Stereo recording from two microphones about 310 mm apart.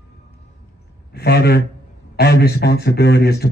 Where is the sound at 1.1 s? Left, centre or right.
Left.